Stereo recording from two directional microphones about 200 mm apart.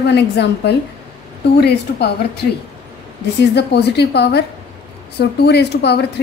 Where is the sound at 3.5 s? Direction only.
55° left (ahead or behind).